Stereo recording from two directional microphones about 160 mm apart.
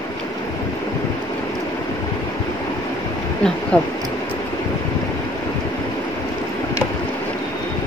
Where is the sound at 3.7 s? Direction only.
5° left (ahead or behind).